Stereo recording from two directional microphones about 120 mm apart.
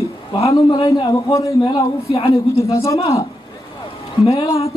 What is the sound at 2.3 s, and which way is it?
Speech, 25° left (ahead or behind).